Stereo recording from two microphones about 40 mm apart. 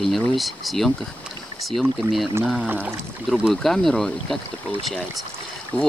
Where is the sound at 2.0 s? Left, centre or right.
Centre.